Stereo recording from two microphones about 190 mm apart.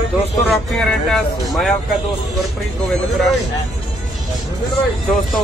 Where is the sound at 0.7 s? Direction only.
Centre (ahead or behind).